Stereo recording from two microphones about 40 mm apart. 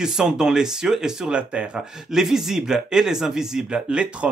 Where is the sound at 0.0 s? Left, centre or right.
Centre.